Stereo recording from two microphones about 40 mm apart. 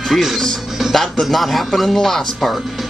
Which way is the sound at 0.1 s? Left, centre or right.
Centre.